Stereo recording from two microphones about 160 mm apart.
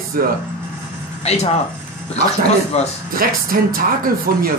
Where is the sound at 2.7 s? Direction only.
40° left (ahead or behind).